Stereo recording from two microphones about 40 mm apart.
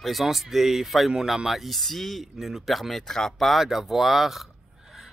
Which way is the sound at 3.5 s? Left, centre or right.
Centre.